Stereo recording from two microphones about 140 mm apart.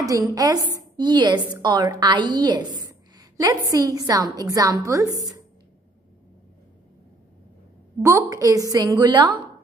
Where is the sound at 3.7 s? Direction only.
25° right (ahead or behind).